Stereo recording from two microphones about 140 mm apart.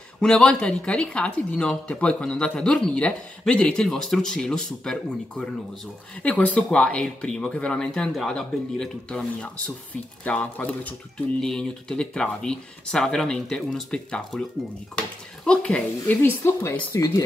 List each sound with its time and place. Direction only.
0.2 s speech: 5° left (ahead or behind)
6.2 s speech: 10° left (ahead or behind)